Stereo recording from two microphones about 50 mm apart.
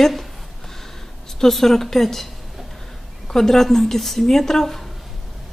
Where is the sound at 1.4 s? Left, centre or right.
Centre.